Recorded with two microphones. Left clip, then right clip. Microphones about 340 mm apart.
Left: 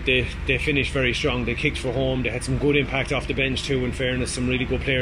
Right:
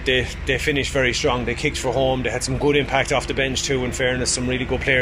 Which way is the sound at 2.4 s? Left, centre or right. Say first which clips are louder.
Even; centre.